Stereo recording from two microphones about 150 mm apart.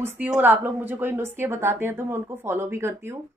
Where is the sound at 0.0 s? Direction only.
15° right (ahead or behind).